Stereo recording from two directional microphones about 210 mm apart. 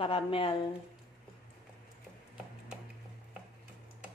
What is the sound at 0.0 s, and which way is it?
Speech, 25° left (ahead or behind).